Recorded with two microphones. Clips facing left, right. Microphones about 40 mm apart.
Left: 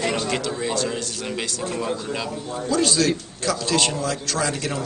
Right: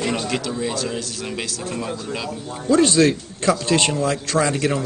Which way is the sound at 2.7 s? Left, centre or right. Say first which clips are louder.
Right 5 dB; right.